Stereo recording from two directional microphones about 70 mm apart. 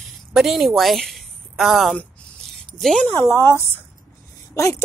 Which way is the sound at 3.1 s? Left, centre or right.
Left.